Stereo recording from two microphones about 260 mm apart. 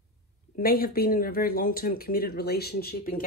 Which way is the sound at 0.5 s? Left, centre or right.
Left.